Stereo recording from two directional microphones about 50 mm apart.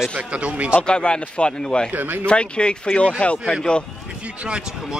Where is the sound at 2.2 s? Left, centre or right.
Left.